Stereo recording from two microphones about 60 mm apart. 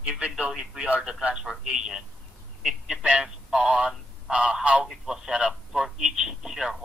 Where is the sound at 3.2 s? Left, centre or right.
Centre.